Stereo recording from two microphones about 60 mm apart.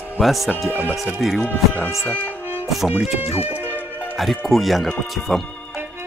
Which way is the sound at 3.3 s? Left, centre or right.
Right.